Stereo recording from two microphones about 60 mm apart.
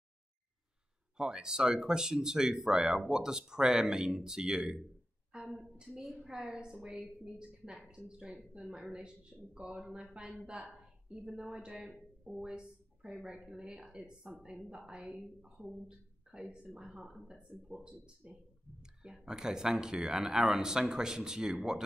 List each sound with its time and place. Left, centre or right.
1.1 s speech: centre
8.2 s speech: right
8.5 s a woman's voice: centre